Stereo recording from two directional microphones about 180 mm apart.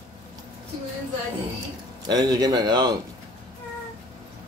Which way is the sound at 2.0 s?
20° right (ahead or behind).